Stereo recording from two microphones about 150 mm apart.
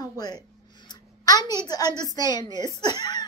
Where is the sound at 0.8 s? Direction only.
25° left (ahead or behind).